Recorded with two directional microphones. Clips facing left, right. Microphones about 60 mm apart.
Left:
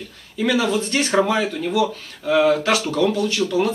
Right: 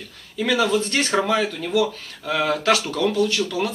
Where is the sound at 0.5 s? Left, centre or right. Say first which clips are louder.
Even; left.